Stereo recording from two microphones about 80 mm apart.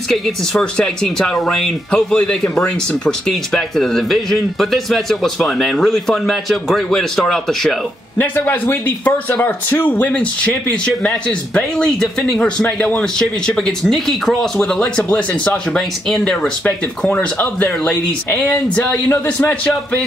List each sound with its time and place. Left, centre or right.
0.1 s speech: centre
8.2 s speech: left; by 18.5 s centre
19.2 s speech: left